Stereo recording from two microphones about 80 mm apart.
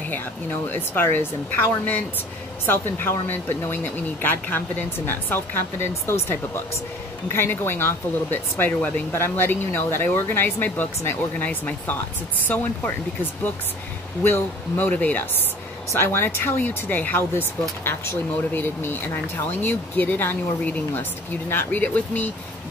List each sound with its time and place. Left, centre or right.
0.1 s speech: left
14.2 s speech: left